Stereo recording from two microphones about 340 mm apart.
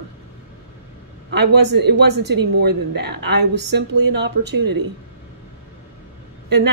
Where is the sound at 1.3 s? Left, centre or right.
Right.